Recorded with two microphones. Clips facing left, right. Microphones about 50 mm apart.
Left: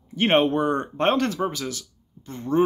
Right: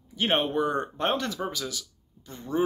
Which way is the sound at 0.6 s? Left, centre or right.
Left.